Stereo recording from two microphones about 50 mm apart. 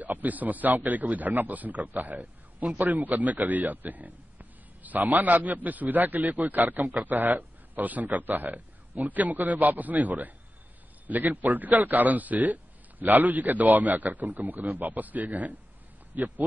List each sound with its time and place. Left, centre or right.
0.0 s speech: right